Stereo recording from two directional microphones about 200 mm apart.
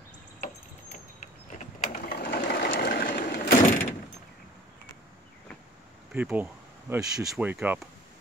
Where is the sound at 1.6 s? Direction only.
40° left (ahead or behind).